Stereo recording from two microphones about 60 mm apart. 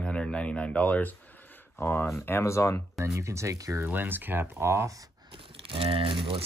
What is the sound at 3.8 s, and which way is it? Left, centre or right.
Speech, right.